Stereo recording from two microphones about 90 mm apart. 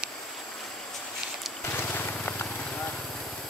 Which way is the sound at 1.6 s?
25° left (ahead or behind).